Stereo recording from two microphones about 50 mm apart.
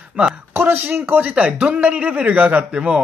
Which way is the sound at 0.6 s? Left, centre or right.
Right.